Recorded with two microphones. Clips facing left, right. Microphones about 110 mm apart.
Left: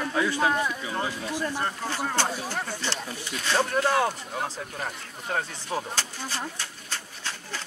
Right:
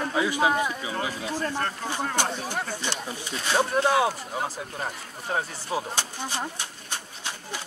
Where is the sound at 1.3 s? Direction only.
15° left (ahead or behind).